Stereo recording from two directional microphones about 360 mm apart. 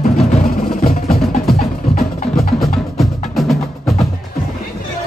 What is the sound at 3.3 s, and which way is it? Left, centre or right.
Music, centre.